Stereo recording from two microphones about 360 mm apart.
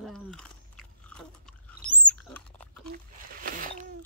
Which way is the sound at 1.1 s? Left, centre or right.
Centre.